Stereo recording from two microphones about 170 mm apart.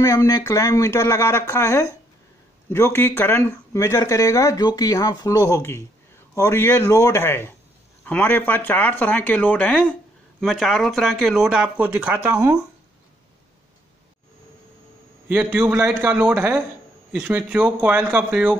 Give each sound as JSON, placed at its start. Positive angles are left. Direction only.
{"t": 0.0, "sound": "speech", "side_deg": 20}
{"t": 15.2, "sound": "speech", "side_deg": -10}